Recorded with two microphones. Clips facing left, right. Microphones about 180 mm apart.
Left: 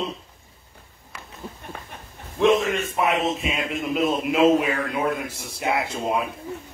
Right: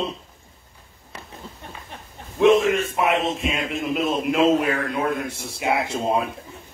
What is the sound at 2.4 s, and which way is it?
A man's voice, centre (ahead or behind).